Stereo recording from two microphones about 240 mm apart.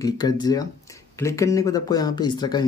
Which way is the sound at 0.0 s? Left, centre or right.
Centre.